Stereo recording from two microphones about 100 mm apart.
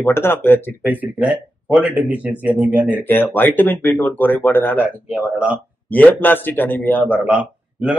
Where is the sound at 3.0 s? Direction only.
20° left (ahead or behind).